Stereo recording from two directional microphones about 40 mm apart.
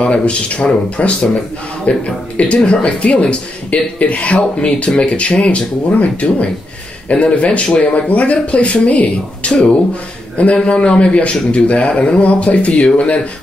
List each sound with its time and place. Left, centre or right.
0.0 s a man's voice: left